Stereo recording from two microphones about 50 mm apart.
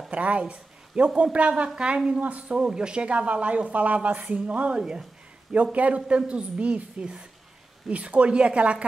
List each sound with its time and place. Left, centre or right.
0.1 s speech: right
5.5 s speech: right